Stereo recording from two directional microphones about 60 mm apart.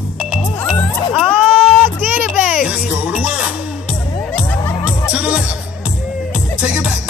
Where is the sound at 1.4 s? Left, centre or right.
Centre.